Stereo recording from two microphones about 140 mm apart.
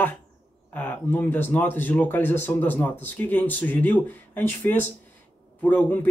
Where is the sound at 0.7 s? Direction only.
15° left (ahead or behind).